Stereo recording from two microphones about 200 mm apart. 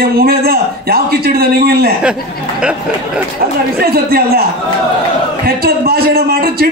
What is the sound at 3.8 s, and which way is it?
Speech, 50° right (ahead or behind).